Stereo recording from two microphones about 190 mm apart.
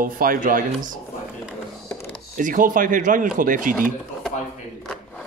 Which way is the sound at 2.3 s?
45° right (ahead or behind).